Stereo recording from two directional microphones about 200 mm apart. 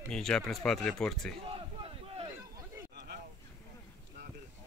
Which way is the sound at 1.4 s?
25° right (ahead or behind).